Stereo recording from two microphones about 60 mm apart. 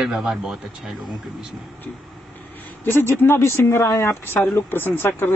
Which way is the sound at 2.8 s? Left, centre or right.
Left.